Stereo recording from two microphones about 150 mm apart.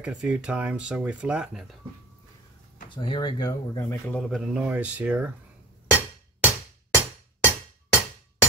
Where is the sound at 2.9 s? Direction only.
35° left (ahead or behind); by 4.2 s 15° left (ahead or behind).